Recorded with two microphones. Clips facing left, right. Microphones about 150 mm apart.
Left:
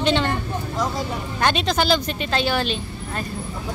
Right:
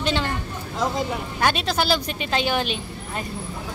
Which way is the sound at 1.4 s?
5° right (ahead or behind).